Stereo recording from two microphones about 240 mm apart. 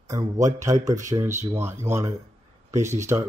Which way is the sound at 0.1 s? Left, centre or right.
Centre.